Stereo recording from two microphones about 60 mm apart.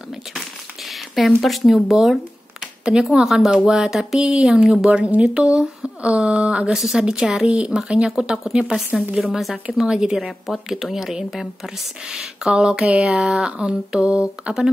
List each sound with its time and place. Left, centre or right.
0.8 s a sound: centre
1.4 s speech: centre
2.8 s speech: centre
6.7 s speech: centre
10.4 s speech: centre